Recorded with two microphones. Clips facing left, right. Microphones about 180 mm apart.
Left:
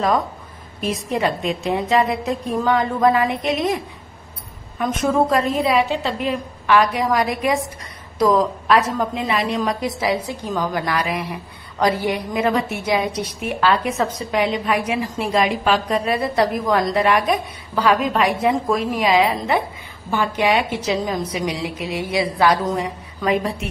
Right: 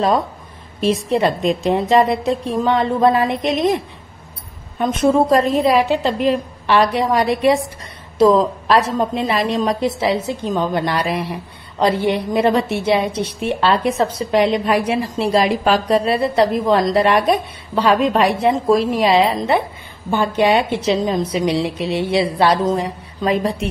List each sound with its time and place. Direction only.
0.7 s a woman's voice: 30° right (ahead or behind)
4.7 s a woman's voice: 30° right (ahead or behind)